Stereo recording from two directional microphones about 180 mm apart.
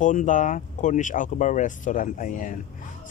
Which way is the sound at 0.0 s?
45° left (ahead or behind).